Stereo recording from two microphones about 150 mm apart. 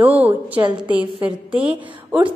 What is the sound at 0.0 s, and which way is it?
A woman's voice, 10° right (ahead or behind).